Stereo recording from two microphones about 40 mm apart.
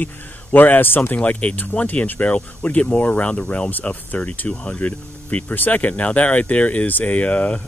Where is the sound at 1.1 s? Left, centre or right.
Left.